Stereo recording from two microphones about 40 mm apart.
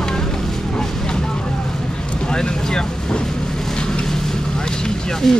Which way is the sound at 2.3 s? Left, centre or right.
Centre.